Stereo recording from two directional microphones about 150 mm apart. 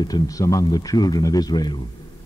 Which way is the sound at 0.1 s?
25° left (ahead or behind).